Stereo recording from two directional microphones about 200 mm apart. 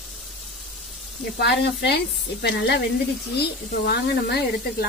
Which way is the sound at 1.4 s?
60° left (ahead or behind).